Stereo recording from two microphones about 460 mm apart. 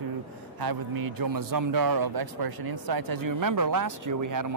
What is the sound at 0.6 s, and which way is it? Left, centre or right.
A man's voice, right.